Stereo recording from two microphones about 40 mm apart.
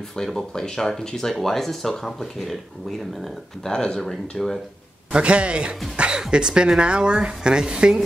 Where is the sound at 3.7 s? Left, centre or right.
Centre.